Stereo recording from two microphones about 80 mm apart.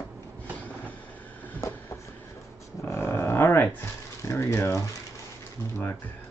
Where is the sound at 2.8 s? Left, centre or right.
Left.